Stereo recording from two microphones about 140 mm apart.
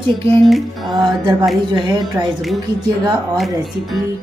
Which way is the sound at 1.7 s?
30° right (ahead or behind).